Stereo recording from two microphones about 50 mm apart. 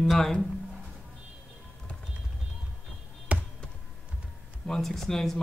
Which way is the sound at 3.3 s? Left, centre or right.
Right.